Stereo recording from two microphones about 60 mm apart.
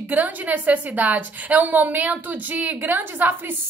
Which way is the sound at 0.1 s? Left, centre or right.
Right.